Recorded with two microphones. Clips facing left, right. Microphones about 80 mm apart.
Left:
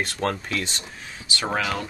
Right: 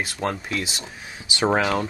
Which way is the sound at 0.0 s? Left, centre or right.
Centre.